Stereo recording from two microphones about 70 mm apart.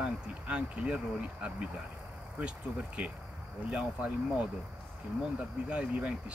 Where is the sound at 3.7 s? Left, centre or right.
Centre.